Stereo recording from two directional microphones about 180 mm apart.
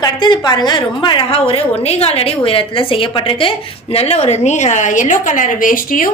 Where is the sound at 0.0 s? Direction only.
25° left (ahead or behind).